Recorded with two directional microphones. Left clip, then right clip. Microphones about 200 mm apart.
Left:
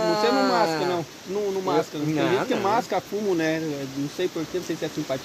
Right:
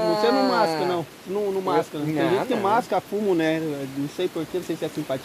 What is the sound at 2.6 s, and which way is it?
Speech, 35° right (ahead or behind).